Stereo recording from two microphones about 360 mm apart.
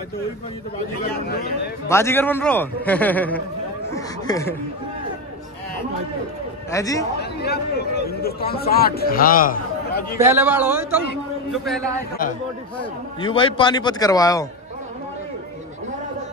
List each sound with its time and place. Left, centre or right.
1.9 s a man's voice: centre
6.7 s a man's voice: centre
7.2 s a man's voice: left
10.1 s a man's voice: centre
13.2 s a man's voice: centre